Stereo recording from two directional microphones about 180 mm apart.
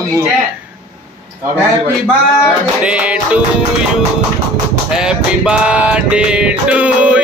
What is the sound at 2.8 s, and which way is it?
Music, 5° right (ahead or behind).